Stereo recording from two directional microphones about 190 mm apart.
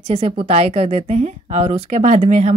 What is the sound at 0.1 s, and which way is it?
A woman's voice, 30° right (ahead or behind).